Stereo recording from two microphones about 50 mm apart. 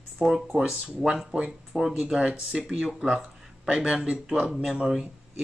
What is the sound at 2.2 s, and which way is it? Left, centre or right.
Speech, right.